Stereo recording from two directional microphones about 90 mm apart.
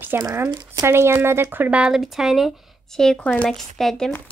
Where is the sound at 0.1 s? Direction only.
25° right (ahead or behind); by 3.4 s 15° left (ahead or behind).